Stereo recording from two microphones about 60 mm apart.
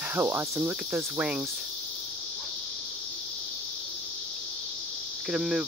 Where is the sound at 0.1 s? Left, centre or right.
Right.